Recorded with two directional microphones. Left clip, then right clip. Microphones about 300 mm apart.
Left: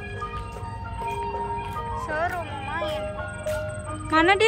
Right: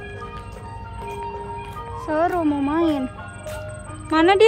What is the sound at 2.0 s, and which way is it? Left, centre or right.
Speech, centre.